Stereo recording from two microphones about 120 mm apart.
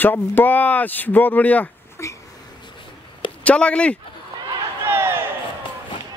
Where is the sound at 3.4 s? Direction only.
10° left (ahead or behind).